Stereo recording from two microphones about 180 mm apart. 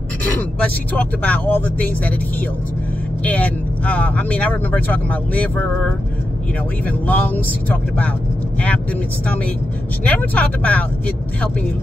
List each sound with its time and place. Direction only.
0.4 s speech: 10° left (ahead or behind)
3.3 s speech: 10° left (ahead or behind)